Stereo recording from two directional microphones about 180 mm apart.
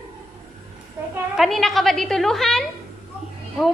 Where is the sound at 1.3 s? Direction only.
Centre (ahead or behind).